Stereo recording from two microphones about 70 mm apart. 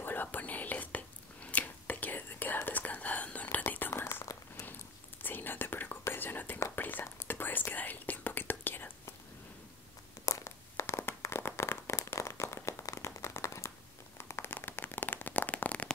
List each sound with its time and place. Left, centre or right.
0.0 s whispering: left
4.0 s whispering: left
5.2 s whispering: left
10.2 s a sound: left
14.1 s firecracker: left